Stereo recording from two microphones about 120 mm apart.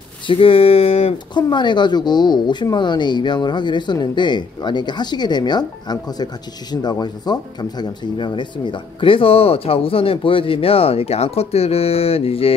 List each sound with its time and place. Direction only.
0.3 s speech: 50° left (ahead or behind)
1.1 s speech: 40° left (ahead or behind)